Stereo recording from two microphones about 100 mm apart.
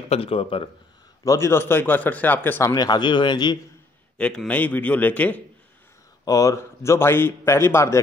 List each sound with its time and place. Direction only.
0.1 s speech: 70° left (ahead or behind)
1.2 s a man's voice: 30° left (ahead or behind)
2.7 s speech: 45° left (ahead or behind)
4.5 s a man's voice: 15° left (ahead or behind)
6.2 s a man's voice: 35° left (ahead or behind)